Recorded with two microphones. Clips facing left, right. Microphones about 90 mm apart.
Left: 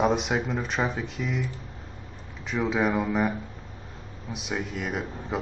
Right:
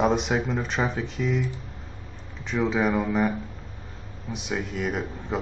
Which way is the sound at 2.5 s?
Centre (ahead or behind).